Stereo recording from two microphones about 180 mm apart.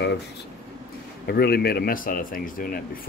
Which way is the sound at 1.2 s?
60° left (ahead or behind).